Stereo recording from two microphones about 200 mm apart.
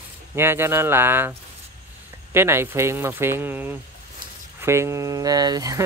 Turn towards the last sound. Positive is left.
turn(degrees=-20)  # may be behind; listen again after turning